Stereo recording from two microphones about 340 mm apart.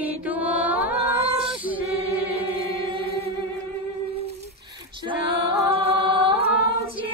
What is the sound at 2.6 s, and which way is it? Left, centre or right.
Chant, centre.